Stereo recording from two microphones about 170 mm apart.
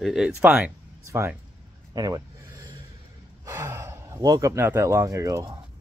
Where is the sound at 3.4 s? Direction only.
15° right (ahead or behind).